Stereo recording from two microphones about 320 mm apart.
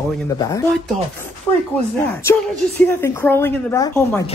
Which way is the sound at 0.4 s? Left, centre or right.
Centre.